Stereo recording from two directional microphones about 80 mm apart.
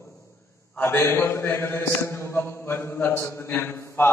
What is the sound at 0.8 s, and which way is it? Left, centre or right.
A man's voice, left.